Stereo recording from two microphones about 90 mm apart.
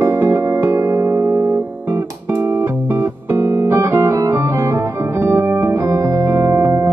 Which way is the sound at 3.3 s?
20° right (ahead or behind).